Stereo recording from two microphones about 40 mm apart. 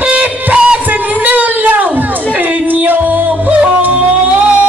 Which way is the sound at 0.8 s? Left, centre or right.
Right.